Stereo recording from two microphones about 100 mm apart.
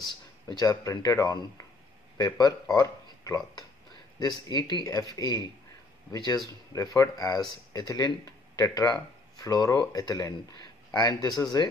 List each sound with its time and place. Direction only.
0.0 s speech: 40° left (ahead or behind)